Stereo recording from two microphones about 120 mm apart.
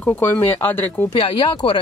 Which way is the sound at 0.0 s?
15° left (ahead or behind).